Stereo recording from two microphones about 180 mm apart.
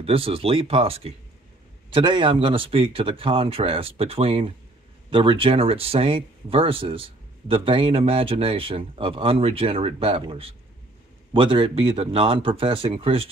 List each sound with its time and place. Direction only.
0.0 s speech: 30° right (ahead or behind)